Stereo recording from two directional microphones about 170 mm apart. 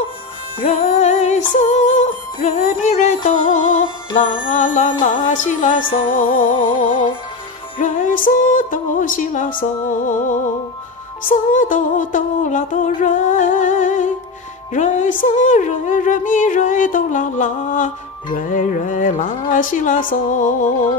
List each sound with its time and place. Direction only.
0.6 s music: 45° left (ahead or behind)